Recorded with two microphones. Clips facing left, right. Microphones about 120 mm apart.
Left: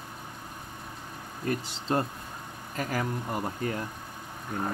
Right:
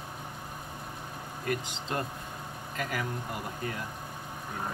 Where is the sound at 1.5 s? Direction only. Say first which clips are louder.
Left 4 dB; 35° left (ahead or behind).